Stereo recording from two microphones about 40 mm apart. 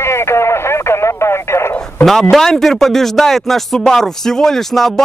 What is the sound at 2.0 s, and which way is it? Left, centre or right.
Speech, centre.